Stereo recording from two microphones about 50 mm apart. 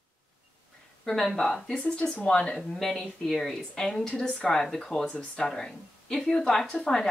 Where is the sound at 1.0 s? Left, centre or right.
Centre.